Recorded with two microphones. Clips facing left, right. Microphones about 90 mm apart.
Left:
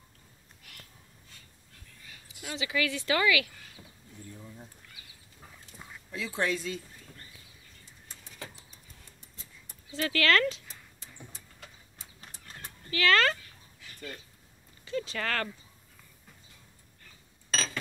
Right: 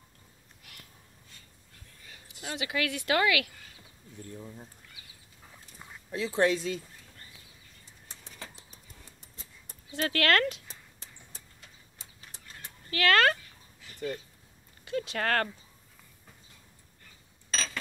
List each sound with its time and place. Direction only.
2.4 s speech: 55° right (ahead or behind)
6.1 s speech: 30° right (ahead or behind)
9.9 s speech: 55° right (ahead or behind)
12.9 s speech: 55° right (ahead or behind)
14.9 s speech: 55° right (ahead or behind)